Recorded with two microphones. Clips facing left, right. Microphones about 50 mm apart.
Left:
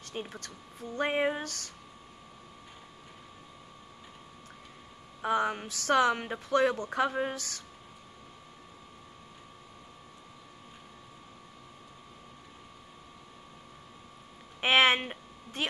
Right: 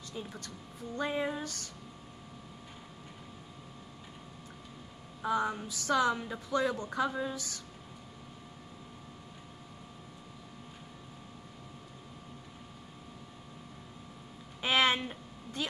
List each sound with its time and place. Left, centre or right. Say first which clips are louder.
0.1 s a woman's voice: left 3 dB; left
5.2 s a woman's voice: left 3 dB; left
14.6 s a sound: left 4 dB; left